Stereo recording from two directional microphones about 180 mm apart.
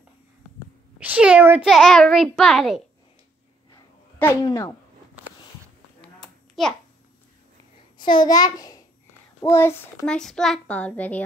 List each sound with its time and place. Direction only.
0.9 s speech: 5° right (ahead or behind)
1.7 s a child's voice: centre (ahead or behind)
4.2 s speech: 10° left (ahead or behind)
4.5 s speech: 25° left (ahead or behind)
5.9 s a sound: centre (ahead or behind)
8.0 s a child's voice: 25° left (ahead or behind); by 11.2 s 10° left (ahead or behind)